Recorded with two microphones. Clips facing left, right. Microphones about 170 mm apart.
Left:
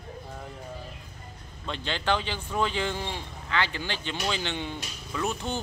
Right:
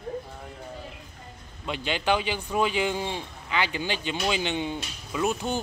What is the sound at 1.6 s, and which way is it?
Speech, 10° right (ahead or behind).